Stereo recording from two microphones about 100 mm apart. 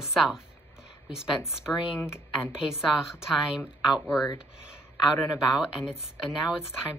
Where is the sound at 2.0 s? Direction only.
25° left (ahead or behind).